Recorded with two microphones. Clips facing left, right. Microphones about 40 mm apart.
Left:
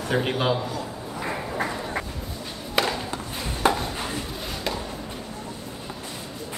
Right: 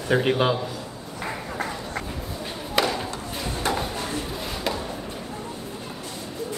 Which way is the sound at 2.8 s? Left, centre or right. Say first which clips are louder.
Right 1 dB; centre.